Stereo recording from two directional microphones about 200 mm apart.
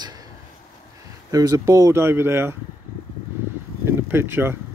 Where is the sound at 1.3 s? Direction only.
15° right (ahead or behind).